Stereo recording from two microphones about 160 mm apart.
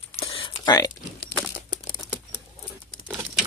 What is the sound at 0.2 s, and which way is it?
Typing, 30° left (ahead or behind).